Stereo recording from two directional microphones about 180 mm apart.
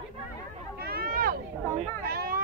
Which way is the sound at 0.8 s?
55° right (ahead or behind).